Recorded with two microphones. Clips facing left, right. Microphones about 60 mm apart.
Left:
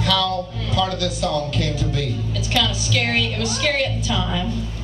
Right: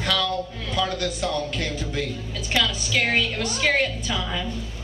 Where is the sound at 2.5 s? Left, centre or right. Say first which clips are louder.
Left 1 dB; centre.